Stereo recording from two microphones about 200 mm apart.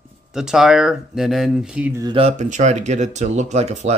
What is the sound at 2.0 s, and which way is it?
Speech, 30° right (ahead or behind).